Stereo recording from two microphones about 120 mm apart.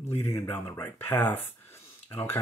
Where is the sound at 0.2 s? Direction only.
20° left (ahead or behind).